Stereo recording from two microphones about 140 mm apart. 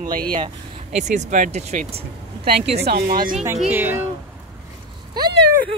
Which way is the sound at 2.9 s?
90° right.